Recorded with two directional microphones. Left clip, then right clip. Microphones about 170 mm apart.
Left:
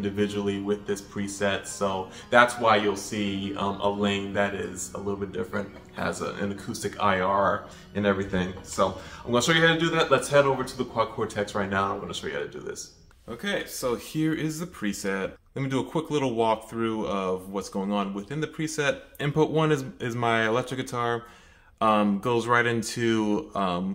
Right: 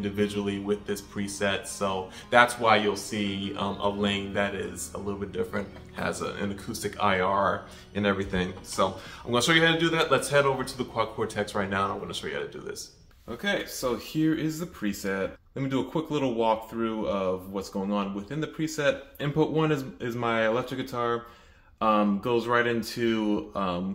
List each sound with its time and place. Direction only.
0.0 s speech: 5° left (ahead or behind)
13.4 s speech: 15° left (ahead or behind); by 23.8 s 35° left (ahead or behind)